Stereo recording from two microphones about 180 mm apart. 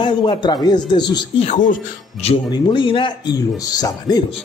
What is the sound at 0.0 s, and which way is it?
Speech, 25° left (ahead or behind).